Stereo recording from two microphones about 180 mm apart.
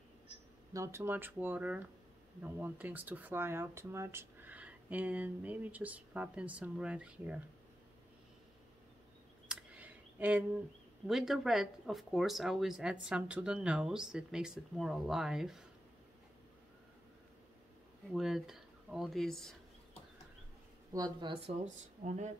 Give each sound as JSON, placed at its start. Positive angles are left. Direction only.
{"t": 0.7, "sound": "speech", "side_deg": -15}
{"t": 9.5, "sound": "a sound", "side_deg": -5}
{"t": 11.1, "sound": "speech", "side_deg": 0}
{"t": 18.1, "sound": "speech", "side_deg": 0}
{"t": 20.9, "sound": "speech", "side_deg": -25}
{"t": 21.6, "sound": "speech", "side_deg": -40}